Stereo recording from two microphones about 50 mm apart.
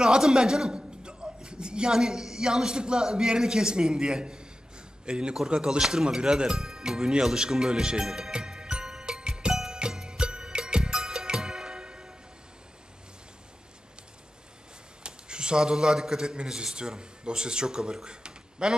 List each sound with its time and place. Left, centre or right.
0.0 s a man's voice: centre
10.0 s music: centre
15.0 s a man's voice: centre